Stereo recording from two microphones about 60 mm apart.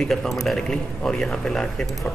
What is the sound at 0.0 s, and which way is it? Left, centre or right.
Speech, centre.